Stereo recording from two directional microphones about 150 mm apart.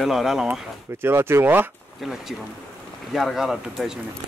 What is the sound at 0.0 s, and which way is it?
Speech, centre (ahead or behind).